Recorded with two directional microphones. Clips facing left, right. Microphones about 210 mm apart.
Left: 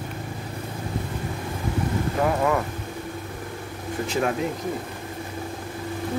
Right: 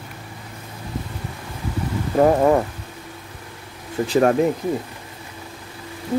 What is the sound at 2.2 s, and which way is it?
Speech, 35° right (ahead or behind).